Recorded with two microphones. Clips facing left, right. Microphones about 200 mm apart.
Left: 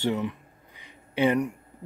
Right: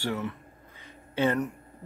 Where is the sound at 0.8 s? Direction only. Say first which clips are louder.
Left 3 dB; 15° left (ahead or behind).